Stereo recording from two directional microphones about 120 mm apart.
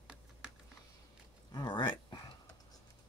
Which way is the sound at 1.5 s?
40° left (ahead or behind).